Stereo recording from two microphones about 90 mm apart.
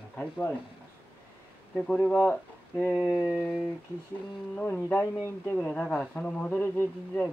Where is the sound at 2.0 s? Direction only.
15° left (ahead or behind).